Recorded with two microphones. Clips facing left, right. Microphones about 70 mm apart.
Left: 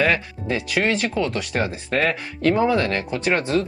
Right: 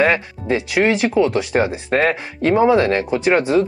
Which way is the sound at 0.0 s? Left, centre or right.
Right.